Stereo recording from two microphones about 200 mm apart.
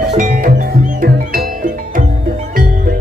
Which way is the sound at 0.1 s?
45° right (ahead or behind).